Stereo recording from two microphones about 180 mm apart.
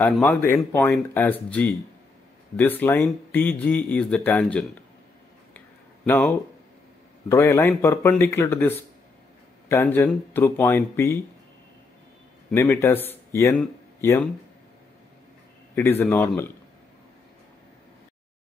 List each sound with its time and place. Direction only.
0.0 s speech: centre (ahead or behind)
0.4 s speech: 15° left (ahead or behind)
6.0 s speech: 10° left (ahead or behind)
12.5 s speech: 15° left (ahead or behind)
15.7 s speech: 10° left (ahead or behind)